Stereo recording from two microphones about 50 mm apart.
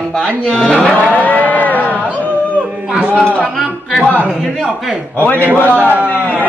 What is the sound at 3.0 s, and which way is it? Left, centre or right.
Speech, right.